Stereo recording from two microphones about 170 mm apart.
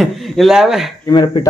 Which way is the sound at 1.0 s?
25° left (ahead or behind).